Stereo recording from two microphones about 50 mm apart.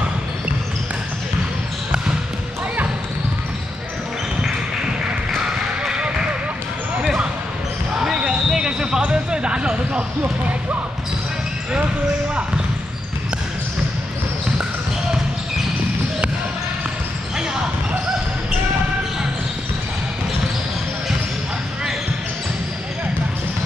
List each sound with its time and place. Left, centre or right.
5.9 s basketball bounce: centre